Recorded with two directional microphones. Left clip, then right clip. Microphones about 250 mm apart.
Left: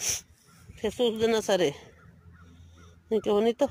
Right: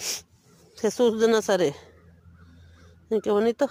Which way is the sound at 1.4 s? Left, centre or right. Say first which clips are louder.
Right 2 dB; centre.